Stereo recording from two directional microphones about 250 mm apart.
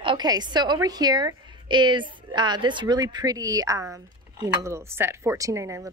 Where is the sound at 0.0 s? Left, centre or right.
Centre.